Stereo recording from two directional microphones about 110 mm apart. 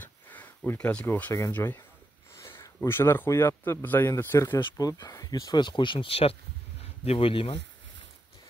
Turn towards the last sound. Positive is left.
turn(degrees=50)  # may be behind; listen again after turning